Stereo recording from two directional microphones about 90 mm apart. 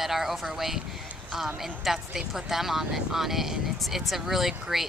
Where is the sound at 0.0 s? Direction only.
5° right (ahead or behind).